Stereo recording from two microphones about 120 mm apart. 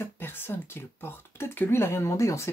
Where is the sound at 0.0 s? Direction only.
20° left (ahead or behind).